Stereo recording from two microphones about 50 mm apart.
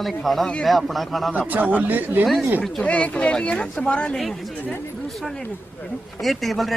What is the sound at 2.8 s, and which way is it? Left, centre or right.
A man's voice, left.